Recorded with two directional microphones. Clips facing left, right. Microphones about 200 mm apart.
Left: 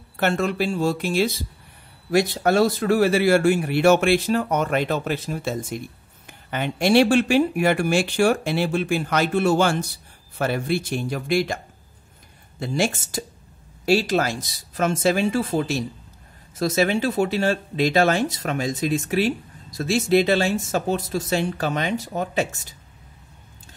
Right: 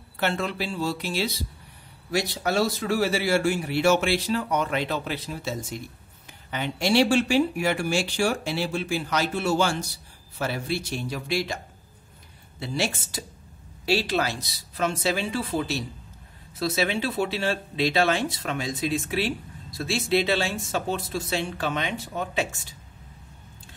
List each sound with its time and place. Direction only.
0.2 s speech: 50° left (ahead or behind)